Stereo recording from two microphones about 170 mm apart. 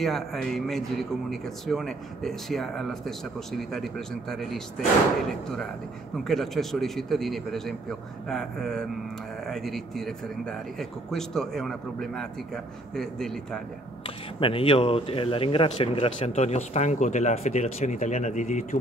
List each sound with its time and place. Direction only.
0.0 s speech: centre (ahead or behind)
6.1 s speech: centre (ahead or behind)
14.0 s speech: 30° left (ahead or behind)